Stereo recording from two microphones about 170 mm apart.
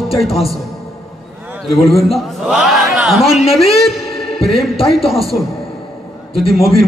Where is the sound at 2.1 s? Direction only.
Centre (ahead or behind).